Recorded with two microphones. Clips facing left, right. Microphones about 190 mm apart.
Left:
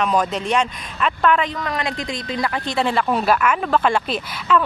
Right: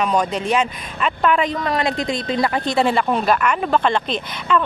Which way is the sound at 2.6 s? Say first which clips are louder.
Right 3 dB; 40° right (ahead or behind).